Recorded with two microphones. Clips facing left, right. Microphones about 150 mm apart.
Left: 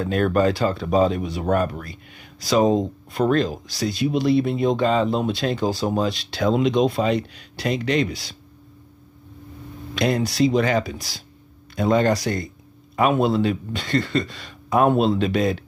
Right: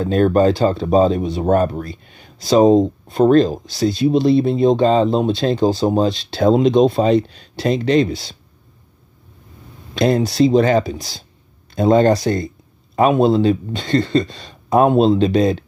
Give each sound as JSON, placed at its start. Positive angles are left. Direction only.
{"t": 0.0, "sound": "speech", "side_deg": -30}
{"t": 9.9, "sound": "speech", "side_deg": -25}